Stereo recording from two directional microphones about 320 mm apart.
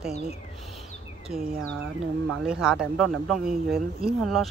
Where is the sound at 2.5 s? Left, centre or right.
Centre.